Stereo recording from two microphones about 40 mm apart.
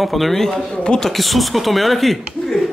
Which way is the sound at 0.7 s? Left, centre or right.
Left.